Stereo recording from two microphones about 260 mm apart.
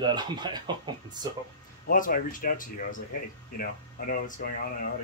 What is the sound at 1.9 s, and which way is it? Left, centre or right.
Speech, left.